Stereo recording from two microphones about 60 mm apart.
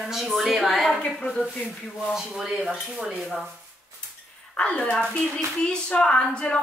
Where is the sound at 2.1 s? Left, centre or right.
Centre.